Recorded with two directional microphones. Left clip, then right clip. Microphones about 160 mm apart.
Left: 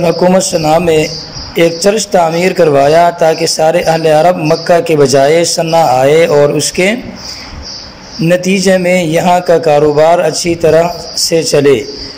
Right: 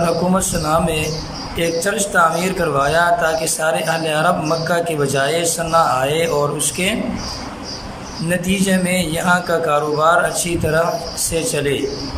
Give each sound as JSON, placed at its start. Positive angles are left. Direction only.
{"t": 0.0, "sound": "a man's voice", "side_deg": 30}
{"t": 8.5, "sound": "a man's voice", "side_deg": 30}